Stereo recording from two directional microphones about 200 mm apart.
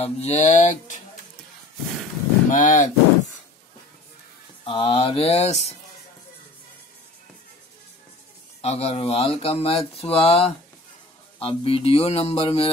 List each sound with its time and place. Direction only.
0.0 s speech: 35° left (ahead or behind)
2.5 s speech: 40° left (ahead or behind)
4.6 s speech: 25° left (ahead or behind)
8.5 s speech: 30° left (ahead or behind)